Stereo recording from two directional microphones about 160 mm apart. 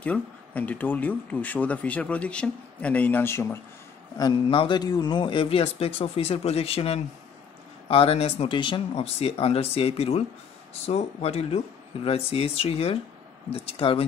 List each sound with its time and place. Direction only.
0.0 s speech: 10° left (ahead or behind)
4.2 s speech: 30° left (ahead or behind)